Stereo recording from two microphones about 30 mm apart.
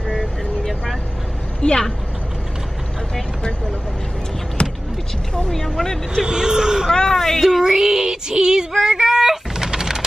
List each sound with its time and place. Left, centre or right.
1.6 s a woman's voice: left
4.6 s a sound: left
5.5 s speech: centre
6.2 s speech: right
6.9 s speech: centre
7.6 s female singing: centre
9.7 s a sound: centre